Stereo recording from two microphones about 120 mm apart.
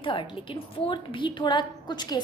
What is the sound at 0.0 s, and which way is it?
A woman's voice, 45° left (ahead or behind).